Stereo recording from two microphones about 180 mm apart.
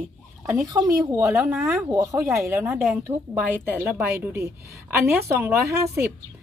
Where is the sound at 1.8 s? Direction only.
15° right (ahead or behind).